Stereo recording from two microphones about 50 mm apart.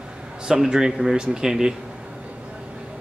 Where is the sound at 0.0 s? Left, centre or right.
Centre.